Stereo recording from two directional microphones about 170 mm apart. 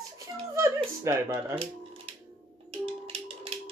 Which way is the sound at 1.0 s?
15° right (ahead or behind).